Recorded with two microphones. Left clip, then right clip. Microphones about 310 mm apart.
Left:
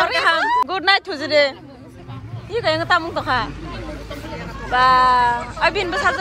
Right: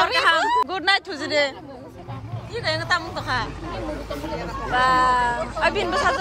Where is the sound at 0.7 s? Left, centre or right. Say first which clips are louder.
Left 4 dB; centre.